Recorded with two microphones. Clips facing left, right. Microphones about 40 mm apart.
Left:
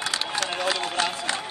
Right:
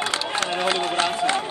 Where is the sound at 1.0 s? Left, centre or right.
Right.